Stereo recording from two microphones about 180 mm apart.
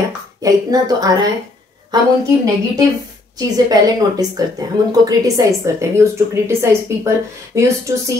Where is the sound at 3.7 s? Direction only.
20° right (ahead or behind).